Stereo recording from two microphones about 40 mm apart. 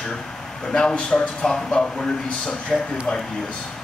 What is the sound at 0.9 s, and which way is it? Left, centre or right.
Speech, left.